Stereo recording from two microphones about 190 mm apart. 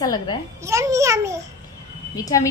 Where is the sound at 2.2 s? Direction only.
20° left (ahead or behind).